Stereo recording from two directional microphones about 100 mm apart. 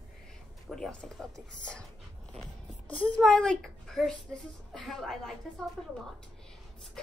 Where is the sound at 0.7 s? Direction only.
5° left (ahead or behind).